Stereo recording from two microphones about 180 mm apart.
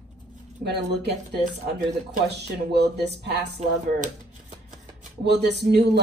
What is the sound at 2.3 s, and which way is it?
Speech, 65° right (ahead or behind).